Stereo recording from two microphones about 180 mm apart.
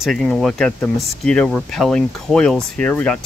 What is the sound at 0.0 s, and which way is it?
Speech, centre (ahead or behind).